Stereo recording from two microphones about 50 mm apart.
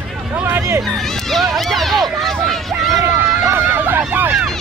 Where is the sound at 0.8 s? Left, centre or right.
Centre.